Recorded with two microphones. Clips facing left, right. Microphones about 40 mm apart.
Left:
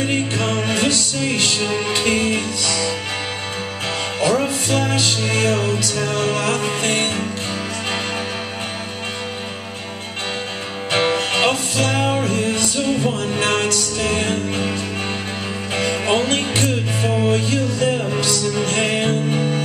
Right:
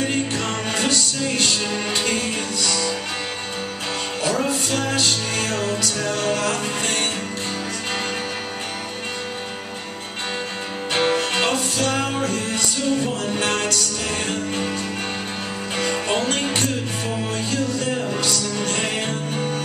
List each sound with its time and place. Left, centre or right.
0.1 s music: left
4.2 s music: left
6.6 s music: left
10.9 s music: centre; by 14.4 s left
14.5 s music: centre